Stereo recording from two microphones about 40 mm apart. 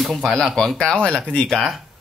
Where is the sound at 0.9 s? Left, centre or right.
Left.